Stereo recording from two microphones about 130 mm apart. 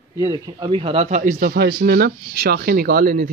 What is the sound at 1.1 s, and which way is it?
Speech, 85° right.